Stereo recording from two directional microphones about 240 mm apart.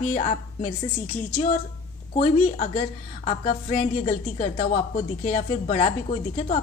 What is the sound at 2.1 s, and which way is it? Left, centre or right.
A woman's voice, left.